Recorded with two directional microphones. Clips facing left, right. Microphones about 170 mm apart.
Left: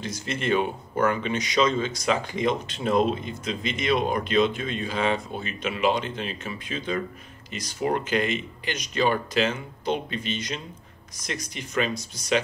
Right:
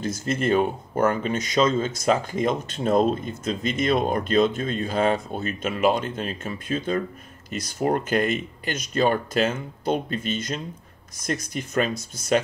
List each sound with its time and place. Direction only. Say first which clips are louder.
0.0 s speech: right 5 dB; 50° right (ahead or behind)